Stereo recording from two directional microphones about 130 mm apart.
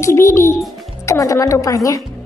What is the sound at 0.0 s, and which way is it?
A child's voice, 20° left (ahead or behind).